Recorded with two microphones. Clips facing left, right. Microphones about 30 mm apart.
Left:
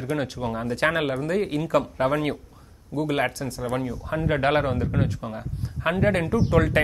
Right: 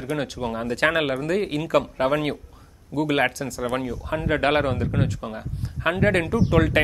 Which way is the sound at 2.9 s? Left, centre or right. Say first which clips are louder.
Right 2 dB; right.